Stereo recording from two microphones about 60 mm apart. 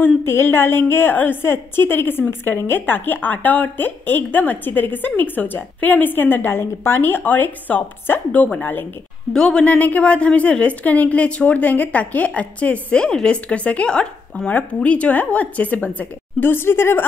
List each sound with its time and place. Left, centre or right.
0.2 s a woman's voice: left
1.4 s a woman's voice: left
9.3 s speech: centre; by 17.0 s left